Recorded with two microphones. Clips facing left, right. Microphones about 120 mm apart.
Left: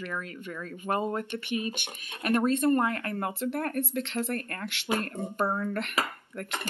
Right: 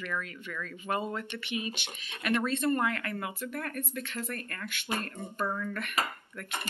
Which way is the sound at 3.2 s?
60° left (ahead or behind).